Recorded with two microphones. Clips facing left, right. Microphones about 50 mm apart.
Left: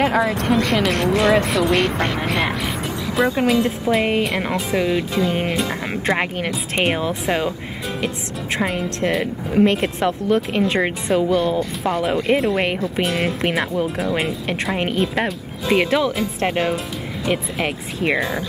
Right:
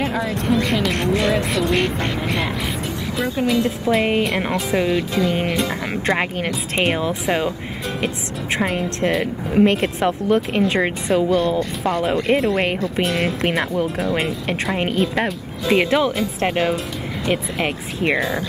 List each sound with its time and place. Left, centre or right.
0.0 s speech: left
0.7 s speech: left
0.9 s a woman's voice: centre
1.6 s speech: left
3.3 s speech: left
3.8 s a woman's voice: centre